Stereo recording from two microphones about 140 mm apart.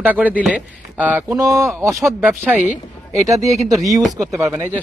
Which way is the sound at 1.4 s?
25° right (ahead or behind).